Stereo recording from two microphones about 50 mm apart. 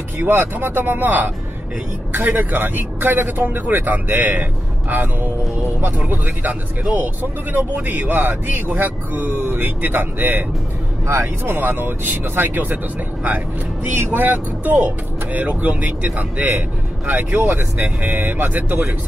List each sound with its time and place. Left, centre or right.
0.2 s speech: right
11.4 s speech: right
13.9 s speech: right